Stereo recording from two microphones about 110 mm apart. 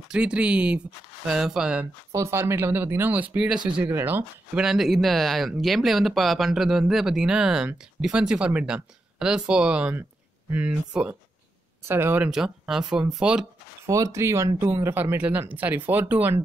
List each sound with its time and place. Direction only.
0.1 s speech: 10° right (ahead or behind)
2.1 s speech: 25° right (ahead or behind)
4.6 s speech: 5° right (ahead or behind); by 12.3 s 20° right (ahead or behind)
12.3 s speech: 5° right (ahead or behind)
13.8 s speech: 30° right (ahead or behind)